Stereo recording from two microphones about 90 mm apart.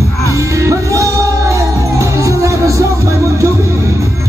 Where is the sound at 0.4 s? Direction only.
35° right (ahead or behind).